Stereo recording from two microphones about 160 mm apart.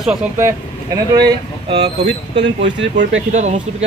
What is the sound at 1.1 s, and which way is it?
Speech, 25° right (ahead or behind).